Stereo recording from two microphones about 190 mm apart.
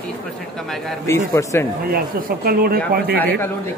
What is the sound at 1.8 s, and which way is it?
Speech, 50° right (ahead or behind).